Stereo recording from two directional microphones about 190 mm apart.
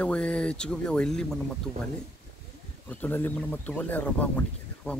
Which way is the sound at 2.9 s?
10° left (ahead or behind).